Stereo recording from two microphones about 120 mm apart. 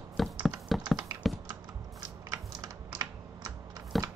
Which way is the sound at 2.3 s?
30° right (ahead or behind).